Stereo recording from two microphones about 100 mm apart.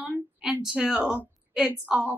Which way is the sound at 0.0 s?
10° right (ahead or behind).